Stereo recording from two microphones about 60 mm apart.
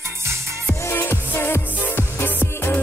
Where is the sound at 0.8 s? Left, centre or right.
Left.